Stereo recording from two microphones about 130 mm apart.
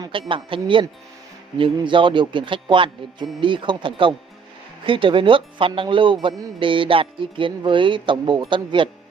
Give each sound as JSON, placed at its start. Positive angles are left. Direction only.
{"t": 0.3, "sound": "speech", "side_deg": -40}